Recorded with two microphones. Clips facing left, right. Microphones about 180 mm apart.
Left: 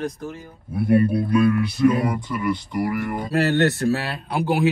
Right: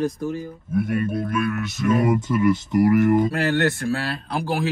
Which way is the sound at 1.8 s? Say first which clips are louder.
Even; 45° right (ahead or behind).